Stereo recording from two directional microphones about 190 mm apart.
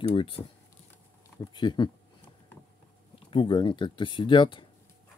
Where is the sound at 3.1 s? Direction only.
25° left (ahead or behind).